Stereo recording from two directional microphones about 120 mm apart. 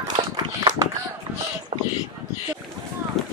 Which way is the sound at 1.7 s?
80° right.